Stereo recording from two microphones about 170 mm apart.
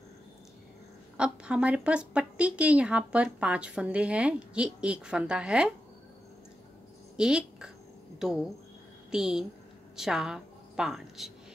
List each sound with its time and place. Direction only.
1.1 s a woman's voice: 5° right (ahead or behind)
7.2 s a woman's voice: 5° right (ahead or behind)